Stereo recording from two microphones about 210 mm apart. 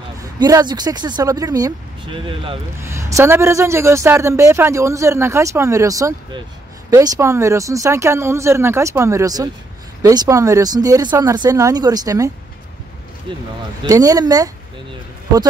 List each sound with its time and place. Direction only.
0.2 s speech: 15° right (ahead or behind)
2.8 s a woman's voice: 15° right (ahead or behind)
13.3 s a woman's voice: 25° right (ahead or behind)